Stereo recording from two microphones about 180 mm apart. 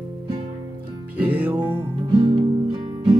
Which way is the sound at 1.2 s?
10° right (ahead or behind).